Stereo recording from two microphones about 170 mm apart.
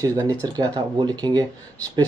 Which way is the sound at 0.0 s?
20° right (ahead or behind).